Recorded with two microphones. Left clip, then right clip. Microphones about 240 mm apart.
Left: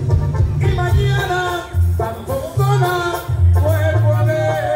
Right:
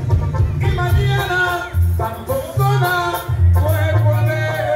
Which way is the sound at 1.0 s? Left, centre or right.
Right.